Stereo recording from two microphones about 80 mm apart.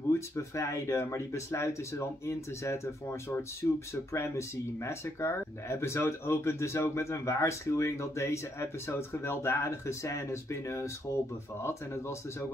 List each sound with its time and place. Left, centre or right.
0.1 s speech: left